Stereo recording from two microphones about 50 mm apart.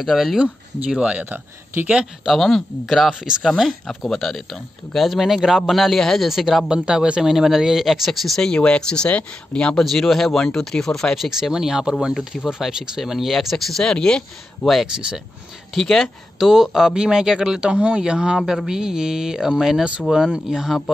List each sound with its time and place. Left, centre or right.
0.0 s speech: centre
0.4 s speech: centre
2.2 s speech: centre
3.1 s speech: centre
6.7 s speech: centre
7.2 s speech: centre
8.4 s speech: centre
9.8 s speech: centre
11.1 s speech: centre
13.0 s speech: centre
13.7 s speech: centre
14.9 s speech: centre
15.7 s speech: centre
16.4 s speech: centre